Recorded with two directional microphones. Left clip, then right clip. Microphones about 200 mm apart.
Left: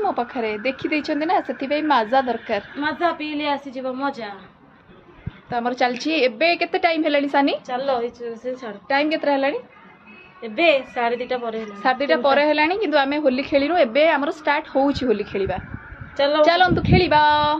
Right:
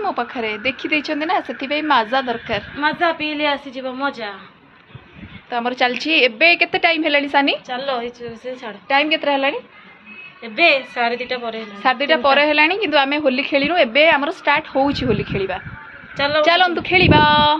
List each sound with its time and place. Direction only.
0.0 s speech: 10° left (ahead or behind)
2.8 s a woman's voice: 10° right (ahead or behind)
5.5 s a woman's voice: centre (ahead or behind); by 8.7 s 15° left (ahead or behind)
8.8 s a woman's voice: 5° right (ahead or behind)
10.4 s speech: 15° left (ahead or behind)
11.8 s a woman's voice: 5° right (ahead or behind)
16.2 s speech: 15° left (ahead or behind)
16.4 s a woman's voice: 10° right (ahead or behind)